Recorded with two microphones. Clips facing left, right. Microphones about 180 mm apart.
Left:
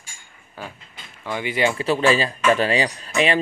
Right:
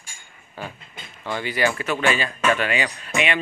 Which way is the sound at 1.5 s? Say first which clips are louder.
Left 3 dB; 20° left (ahead or behind).